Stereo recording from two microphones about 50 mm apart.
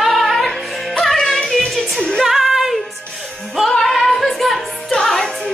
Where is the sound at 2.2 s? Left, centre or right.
Centre.